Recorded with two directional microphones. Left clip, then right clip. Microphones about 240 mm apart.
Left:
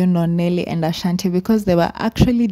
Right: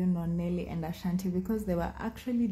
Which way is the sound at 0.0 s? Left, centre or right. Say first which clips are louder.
Left 15 dB; left.